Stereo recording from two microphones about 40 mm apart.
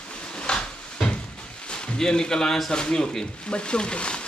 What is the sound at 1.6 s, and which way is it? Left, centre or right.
Speech, left.